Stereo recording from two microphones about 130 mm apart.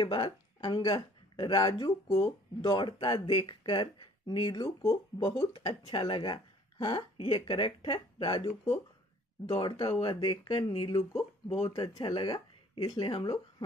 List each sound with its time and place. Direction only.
0.0 s speech: 30° left (ahead or behind)
9.5 s speech: 35° left (ahead or behind)
11.0 s speech: 55° left (ahead or behind)
11.7 s speech: 35° left (ahead or behind)